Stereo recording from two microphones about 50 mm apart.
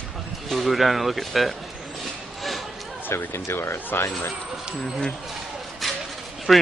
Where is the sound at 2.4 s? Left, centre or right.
Centre.